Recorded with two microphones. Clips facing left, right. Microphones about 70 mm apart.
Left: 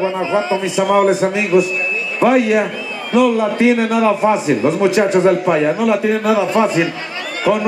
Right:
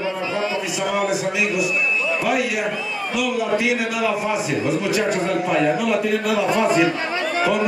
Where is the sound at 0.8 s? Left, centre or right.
Left.